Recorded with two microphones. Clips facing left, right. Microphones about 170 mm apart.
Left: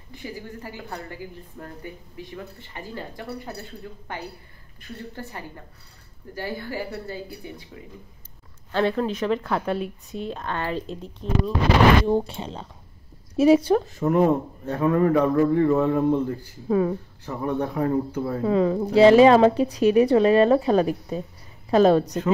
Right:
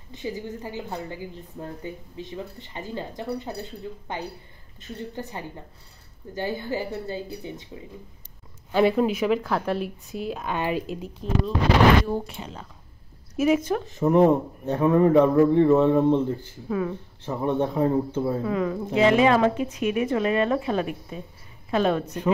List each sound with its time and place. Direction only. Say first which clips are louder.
0.1 s a woman's voice: right 4 dB; 20° right (ahead or behind)
8.7 s a woman's voice: right 3 dB; 10° right (ahead or behind)
12.1 s a woman's voice: left 6 dB; 30° left (ahead or behind)
13.8 s a woman's voice: right 2 dB; 20° right (ahead or behind)
16.6 s a woman's voice: left 5 dB; 35° left (ahead or behind)
17.4 s a woman's voice: right 2 dB; 25° right (ahead or behind)
18.4 s a woman's voice: left 5 dB; 30° left (ahead or behind)